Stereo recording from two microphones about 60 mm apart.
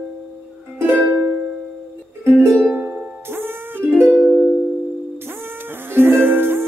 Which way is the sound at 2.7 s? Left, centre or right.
Right.